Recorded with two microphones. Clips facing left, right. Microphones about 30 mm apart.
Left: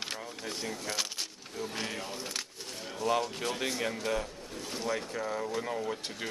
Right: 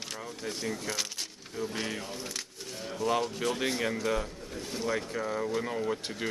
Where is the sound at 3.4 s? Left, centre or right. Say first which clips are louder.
Right 3 dB; centre.